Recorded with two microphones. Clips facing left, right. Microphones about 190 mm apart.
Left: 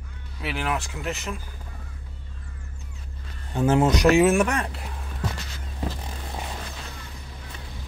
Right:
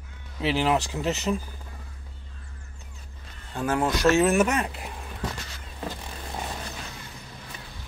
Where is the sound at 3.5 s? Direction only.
20° left (ahead or behind).